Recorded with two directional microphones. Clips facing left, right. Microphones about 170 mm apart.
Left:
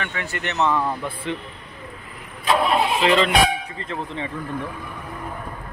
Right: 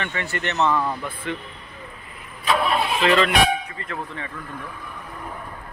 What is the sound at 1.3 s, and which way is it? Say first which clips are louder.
Speech: left 1 dB; 25° left (ahead or behind).